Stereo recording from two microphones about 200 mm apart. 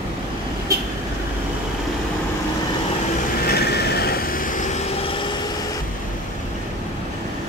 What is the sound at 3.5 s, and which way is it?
Vehicle, 55° left (ahead or behind).